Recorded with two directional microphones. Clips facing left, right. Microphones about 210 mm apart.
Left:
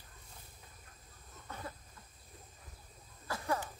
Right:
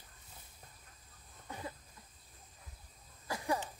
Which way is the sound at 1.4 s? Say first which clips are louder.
Right 1 dB; 15° right (ahead or behind).